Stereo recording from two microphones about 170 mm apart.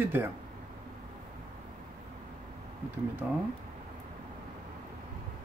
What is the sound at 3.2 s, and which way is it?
Speech, 10° right (ahead or behind).